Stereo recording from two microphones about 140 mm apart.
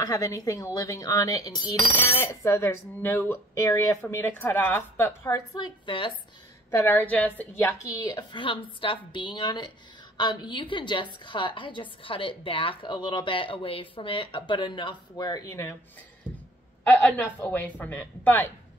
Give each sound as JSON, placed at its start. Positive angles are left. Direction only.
{"t": 0.0, "sound": "a woman's voice", "side_deg": 20}
{"t": 2.0, "sound": "speech", "side_deg": 15}
{"t": 6.7, "sound": "a woman's voice", "side_deg": 15}
{"t": 16.3, "sound": "a sound", "side_deg": -10}
{"t": 16.8, "sound": "speech", "side_deg": 15}